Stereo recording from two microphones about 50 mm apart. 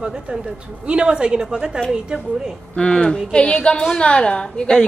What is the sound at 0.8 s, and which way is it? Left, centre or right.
Speech, centre.